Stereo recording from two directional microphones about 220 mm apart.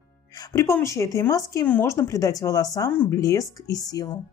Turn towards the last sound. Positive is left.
turn(degrees=15)  # may be behind; listen again after turning